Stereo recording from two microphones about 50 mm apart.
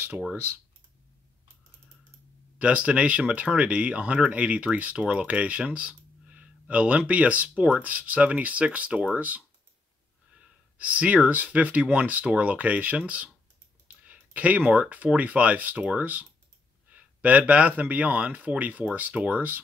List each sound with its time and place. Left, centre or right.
2.6 s speech: right